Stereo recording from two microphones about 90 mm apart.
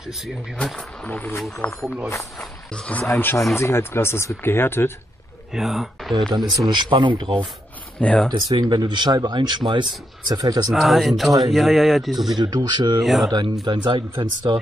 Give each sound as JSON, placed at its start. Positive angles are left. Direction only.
{"t": 0.0, "sound": "speech", "side_deg": -5}
{"t": 0.7, "sound": "speech", "side_deg": 15}
{"t": 3.1, "sound": "speech", "side_deg": 30}
{"t": 5.5, "sound": "speech", "side_deg": -5}
{"t": 6.3, "sound": "speech", "side_deg": -55}
{"t": 8.0, "sound": "speech", "side_deg": 10}
{"t": 8.3, "sound": "speech", "side_deg": -55}
{"t": 10.7, "sound": "speech", "side_deg": 0}
{"t": 12.4, "sound": "speech", "side_deg": -50}
{"t": 13.0, "sound": "speech", "side_deg": 0}
{"t": 13.7, "sound": "speech", "side_deg": -55}